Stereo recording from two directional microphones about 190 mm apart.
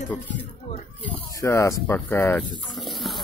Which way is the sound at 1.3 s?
15° left (ahead or behind).